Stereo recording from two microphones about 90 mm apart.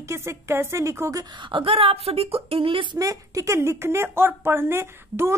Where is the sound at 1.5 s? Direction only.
80° right.